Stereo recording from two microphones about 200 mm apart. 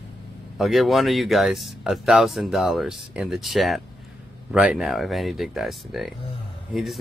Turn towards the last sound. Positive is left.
turn(degrees=0)  # may be behind; listen again after turning